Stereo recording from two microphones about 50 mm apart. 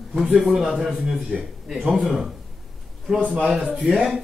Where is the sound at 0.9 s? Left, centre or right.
Centre.